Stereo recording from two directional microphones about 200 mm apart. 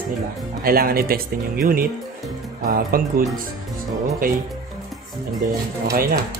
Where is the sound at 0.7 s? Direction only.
50° right (ahead or behind).